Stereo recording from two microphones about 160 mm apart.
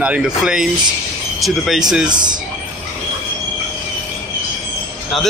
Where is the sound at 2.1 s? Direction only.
25° right (ahead or behind).